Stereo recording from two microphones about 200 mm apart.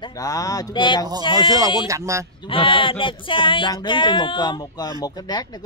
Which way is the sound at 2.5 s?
25° left (ahead or behind).